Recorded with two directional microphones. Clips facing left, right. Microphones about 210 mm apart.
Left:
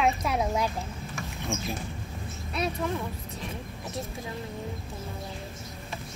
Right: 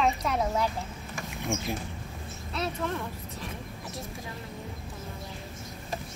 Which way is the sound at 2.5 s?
10° left (ahead or behind).